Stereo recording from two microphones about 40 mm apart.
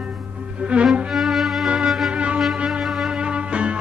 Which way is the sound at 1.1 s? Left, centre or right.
Centre.